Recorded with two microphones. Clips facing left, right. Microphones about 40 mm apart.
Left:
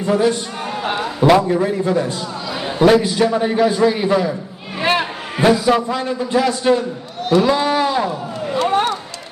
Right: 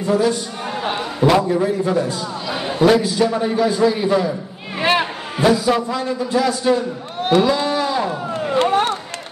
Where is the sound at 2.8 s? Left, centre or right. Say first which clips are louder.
Left 2 dB; left.